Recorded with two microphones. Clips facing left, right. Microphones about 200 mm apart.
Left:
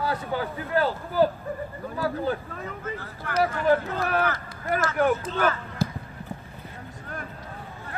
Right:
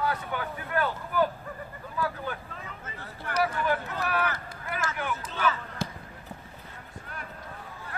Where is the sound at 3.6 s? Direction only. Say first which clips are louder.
Left 7 dB; 40° left (ahead or behind).